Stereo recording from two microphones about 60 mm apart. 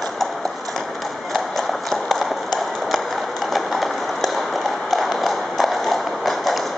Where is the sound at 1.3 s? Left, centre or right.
Centre.